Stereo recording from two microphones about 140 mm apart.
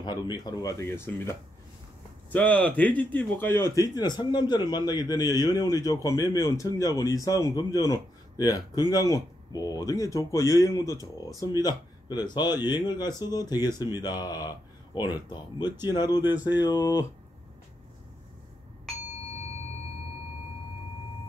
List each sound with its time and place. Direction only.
0.0 s speech: 30° left (ahead or behind)
2.3 s speech: 10° left (ahead or behind); by 17.0 s 25° left (ahead or behind)